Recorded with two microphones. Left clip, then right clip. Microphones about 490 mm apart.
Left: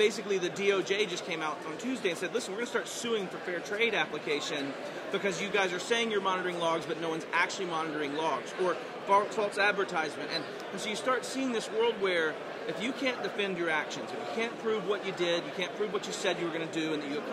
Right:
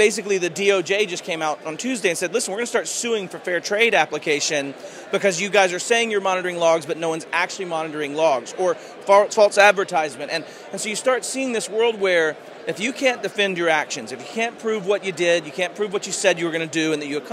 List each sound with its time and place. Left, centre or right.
0.0 s a man's voice: right